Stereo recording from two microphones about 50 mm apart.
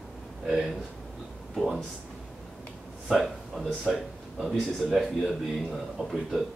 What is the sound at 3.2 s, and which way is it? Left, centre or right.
Speech, centre.